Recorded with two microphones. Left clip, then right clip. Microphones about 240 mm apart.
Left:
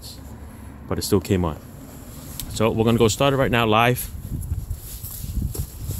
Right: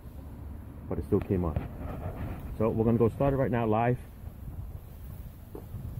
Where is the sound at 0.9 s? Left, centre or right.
Left.